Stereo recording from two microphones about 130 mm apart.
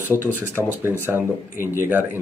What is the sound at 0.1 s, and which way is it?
Speech, 15° right (ahead or behind).